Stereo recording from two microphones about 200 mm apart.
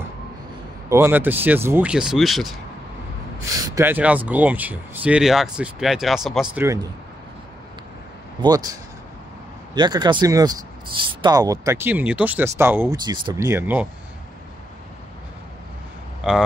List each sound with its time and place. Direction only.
0.8 s speech: 15° right (ahead or behind)
3.6 s speech: 15° right (ahead or behind)
8.4 s speech: 20° right (ahead or behind)
9.8 s speech: 20° right (ahead or behind)
16.2 s speech: centre (ahead or behind)